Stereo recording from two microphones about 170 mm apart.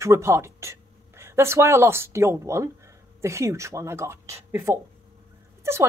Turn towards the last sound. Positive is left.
turn(degrees=-15)  # may be behind; listen again after turning